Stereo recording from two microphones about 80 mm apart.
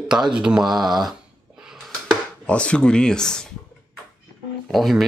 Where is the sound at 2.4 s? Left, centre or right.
Centre.